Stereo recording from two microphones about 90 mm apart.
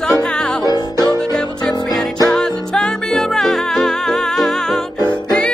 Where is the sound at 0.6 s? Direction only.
50° left (ahead or behind).